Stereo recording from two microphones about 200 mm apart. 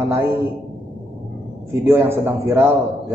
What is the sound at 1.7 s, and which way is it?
Speech, 10° right (ahead or behind).